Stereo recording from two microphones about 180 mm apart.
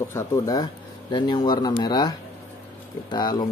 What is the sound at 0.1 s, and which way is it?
Speech, 20° left (ahead or behind).